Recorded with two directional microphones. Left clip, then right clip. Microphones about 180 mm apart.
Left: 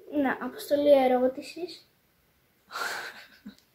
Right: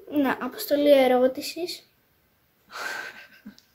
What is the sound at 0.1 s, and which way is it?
A child's voice, 20° right (ahead or behind).